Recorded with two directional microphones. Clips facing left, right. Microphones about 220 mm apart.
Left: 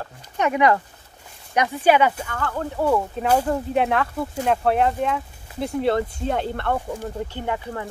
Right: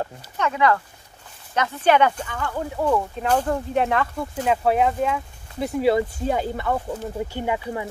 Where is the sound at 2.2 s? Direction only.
5° right (ahead or behind).